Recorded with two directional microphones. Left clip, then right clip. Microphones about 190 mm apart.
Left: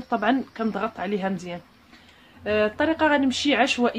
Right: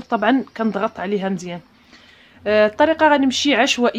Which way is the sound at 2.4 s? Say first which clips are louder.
Right 8 dB; 40° right (ahead or behind).